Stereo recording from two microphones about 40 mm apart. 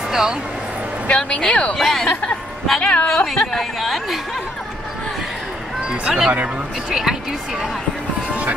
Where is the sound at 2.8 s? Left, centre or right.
Left.